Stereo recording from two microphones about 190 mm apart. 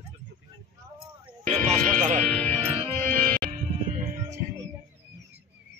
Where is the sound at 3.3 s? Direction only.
45° right (ahead or behind).